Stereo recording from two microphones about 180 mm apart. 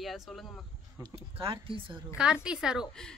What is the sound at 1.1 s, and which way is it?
Speech, 30° right (ahead or behind).